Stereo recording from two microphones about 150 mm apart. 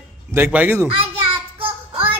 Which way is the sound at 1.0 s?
35° right (ahead or behind).